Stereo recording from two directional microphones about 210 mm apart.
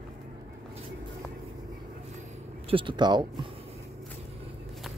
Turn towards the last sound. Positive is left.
turn(degrees=-20)  # may be behind; listen again after turning